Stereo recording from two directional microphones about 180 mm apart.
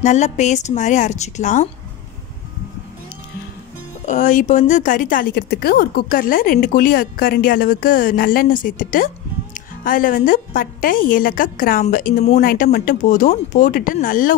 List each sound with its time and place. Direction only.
0.0 s a woman's voice: 40° left (ahead or behind)
4.0 s a woman's voice: 45° left (ahead or behind)